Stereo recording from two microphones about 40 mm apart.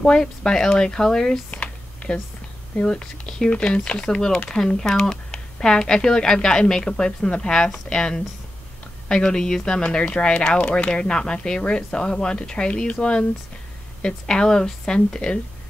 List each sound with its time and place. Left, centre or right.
0.0 s speech: centre
2.8 s speech: left
3.4 s speech: left
4.7 s speech: centre
5.0 s a sound: centre
6.0 s speech: centre